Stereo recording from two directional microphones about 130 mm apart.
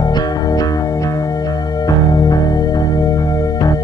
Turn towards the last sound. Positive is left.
turn(degrees=25)  # may be behind; listen again after turning